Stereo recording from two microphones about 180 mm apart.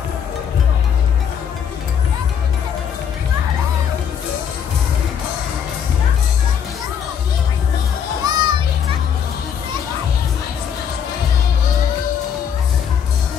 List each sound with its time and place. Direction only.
8.2 s children playing: 20° right (ahead or behind)